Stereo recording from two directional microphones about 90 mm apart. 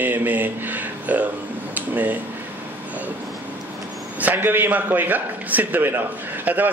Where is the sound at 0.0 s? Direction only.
20° right (ahead or behind).